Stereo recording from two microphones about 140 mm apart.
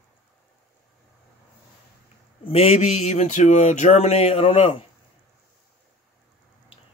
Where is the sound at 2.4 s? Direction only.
45° left (ahead or behind).